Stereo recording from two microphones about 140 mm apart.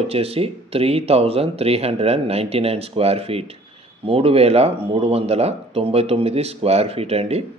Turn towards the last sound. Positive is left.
turn(degrees=-50)  # may be behind; listen again after turning